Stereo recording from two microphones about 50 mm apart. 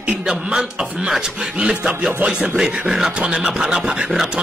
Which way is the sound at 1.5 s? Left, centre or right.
Centre.